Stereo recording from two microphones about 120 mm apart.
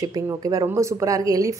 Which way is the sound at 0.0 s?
30° right (ahead or behind).